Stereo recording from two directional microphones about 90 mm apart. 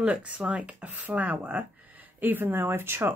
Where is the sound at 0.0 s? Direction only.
15° right (ahead or behind).